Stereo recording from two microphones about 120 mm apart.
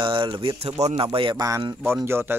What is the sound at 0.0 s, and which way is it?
Speech, 45° right (ahead or behind).